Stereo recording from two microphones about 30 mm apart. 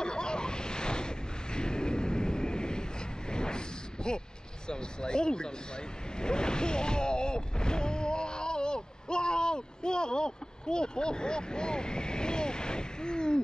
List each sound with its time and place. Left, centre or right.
0.0 s waves: left
3.3 s a sound: left
4.6 s speech: left